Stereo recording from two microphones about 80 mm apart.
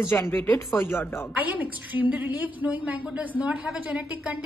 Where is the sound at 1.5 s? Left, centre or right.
Right.